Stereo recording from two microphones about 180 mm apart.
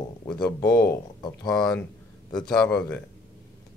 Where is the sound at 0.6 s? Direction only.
15° left (ahead or behind).